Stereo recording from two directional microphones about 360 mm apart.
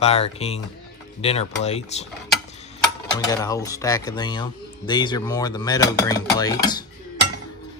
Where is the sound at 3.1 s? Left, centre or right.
Centre.